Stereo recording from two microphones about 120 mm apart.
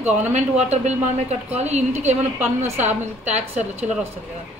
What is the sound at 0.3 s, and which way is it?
Speech, 70° right (ahead or behind).